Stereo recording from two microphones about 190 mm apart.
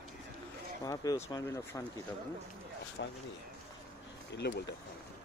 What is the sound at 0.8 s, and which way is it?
Speech, 20° left (ahead or behind).